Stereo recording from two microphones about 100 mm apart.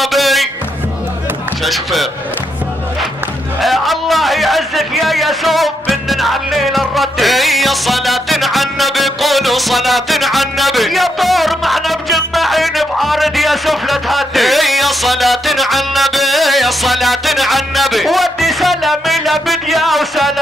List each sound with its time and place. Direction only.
0.0 s music: centre (ahead or behind)
1.6 s chop: centre (ahead or behind)
3.6 s a sound: centre (ahead or behind)